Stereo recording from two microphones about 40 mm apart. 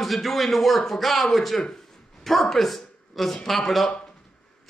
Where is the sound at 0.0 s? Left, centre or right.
Centre.